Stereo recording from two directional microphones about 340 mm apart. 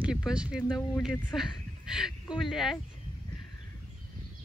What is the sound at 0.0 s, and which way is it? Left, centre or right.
Speech, centre.